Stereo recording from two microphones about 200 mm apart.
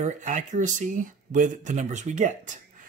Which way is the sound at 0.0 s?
35° right (ahead or behind).